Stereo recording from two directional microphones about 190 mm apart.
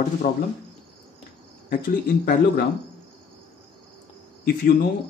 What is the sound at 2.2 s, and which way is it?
Speech, 50° left (ahead or behind).